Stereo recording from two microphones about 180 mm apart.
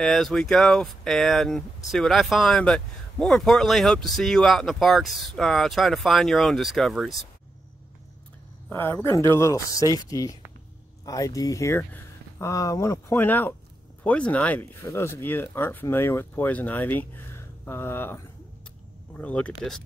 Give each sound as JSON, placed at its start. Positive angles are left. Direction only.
{"t": 0.0, "sound": "speech", "side_deg": 5}
{"t": 8.6, "sound": "speech", "side_deg": 10}